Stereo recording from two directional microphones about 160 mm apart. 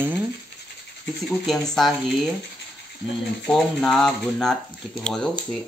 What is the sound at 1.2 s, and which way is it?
Speech, centre (ahead or behind).